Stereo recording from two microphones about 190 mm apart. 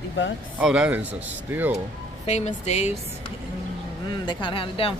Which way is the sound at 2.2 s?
35° left (ahead or behind).